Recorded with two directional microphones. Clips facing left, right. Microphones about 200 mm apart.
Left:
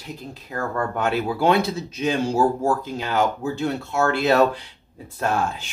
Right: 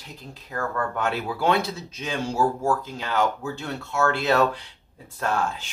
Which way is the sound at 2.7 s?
20° left (ahead or behind).